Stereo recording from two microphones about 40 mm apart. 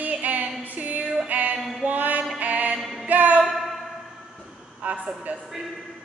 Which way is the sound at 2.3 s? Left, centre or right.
Right.